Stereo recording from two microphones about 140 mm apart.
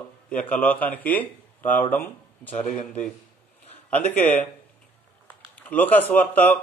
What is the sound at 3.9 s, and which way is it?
Speech, 10° left (ahead or behind).